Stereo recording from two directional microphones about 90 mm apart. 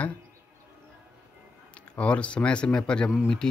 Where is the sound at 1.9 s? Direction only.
15° left (ahead or behind).